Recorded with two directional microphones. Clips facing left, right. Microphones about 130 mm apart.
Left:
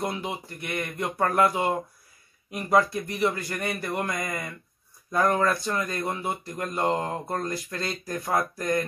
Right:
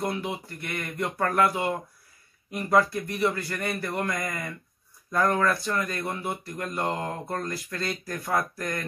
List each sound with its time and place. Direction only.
0.0 s a man's voice: 20° left (ahead or behind)